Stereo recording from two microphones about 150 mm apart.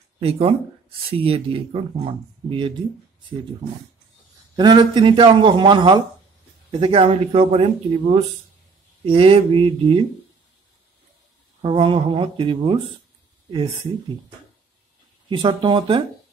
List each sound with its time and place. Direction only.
0.2 s speech: 40° right (ahead or behind)
4.6 s speech: 30° right (ahead or behind)
11.6 s speech: 35° right (ahead or behind)
15.2 s speech: 35° right (ahead or behind)